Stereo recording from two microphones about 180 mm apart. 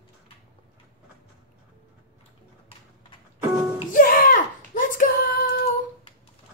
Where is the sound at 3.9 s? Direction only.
50° left (ahead or behind).